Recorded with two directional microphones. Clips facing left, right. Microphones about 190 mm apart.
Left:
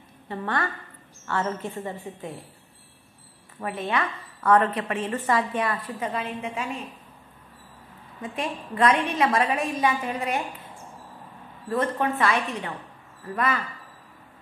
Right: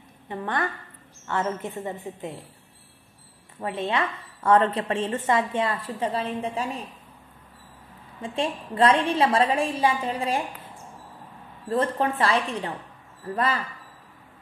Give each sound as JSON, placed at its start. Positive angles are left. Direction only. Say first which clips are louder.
{"t": 0.3, "sound": "a woman's voice", "louder": "even", "side_deg": -20}
{"t": 3.6, "sound": "a woman's voice", "louder": "right 1 dB", "side_deg": -25}
{"t": 8.2, "sound": "a woman's voice", "louder": "right 3 dB", "side_deg": -30}
{"t": 11.7, "sound": "a woman's voice", "louder": "right 1 dB", "side_deg": -30}